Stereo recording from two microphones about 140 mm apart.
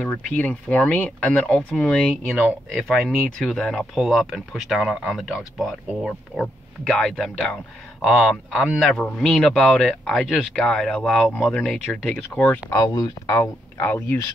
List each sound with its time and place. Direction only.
0.0 s speech: 10° left (ahead or behind)
12.6 s speech: 25° left (ahead or behind)